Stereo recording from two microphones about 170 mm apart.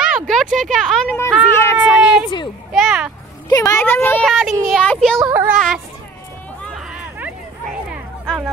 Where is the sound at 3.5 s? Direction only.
20° left (ahead or behind); by 5.8 s centre (ahead or behind).